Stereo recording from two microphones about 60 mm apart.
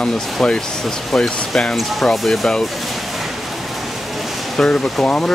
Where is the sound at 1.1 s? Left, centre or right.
Centre.